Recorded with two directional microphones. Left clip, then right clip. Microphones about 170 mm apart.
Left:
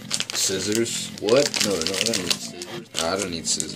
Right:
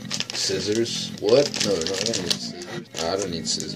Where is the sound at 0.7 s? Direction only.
10° left (ahead or behind).